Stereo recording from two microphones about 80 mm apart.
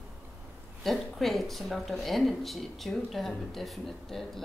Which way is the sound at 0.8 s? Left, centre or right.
Centre.